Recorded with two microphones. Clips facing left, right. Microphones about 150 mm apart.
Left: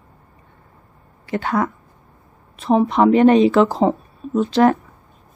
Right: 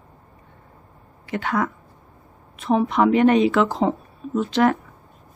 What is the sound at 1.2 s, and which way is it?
A woman's voice, 35° left (ahead or behind).